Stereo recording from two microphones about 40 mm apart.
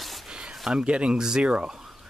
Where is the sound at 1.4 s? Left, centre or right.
Right.